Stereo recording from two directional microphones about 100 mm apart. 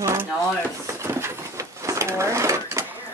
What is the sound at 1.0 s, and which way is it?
Drawer open or close, 25° right (ahead or behind).